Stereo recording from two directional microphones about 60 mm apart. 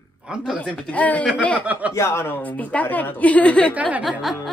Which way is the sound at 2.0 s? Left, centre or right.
Left.